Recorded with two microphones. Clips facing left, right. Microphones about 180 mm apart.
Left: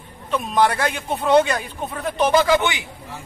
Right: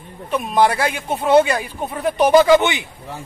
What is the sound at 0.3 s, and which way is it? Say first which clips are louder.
Speech: right 2 dB; 10° right (ahead or behind).